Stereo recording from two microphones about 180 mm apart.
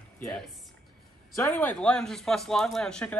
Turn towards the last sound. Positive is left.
turn(degrees=5)  # may be behind; listen again after turning